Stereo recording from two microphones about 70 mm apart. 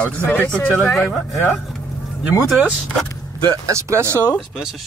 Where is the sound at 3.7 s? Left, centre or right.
Right.